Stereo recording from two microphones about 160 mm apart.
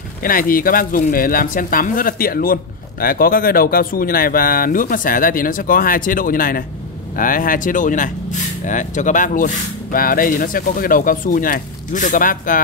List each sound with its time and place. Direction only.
0.2 s speech: 60° left (ahead or behind)